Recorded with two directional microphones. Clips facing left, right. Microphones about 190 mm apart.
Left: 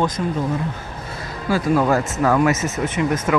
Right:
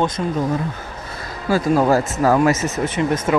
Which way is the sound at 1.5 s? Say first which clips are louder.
Right 2 dB; 35° right (ahead or behind).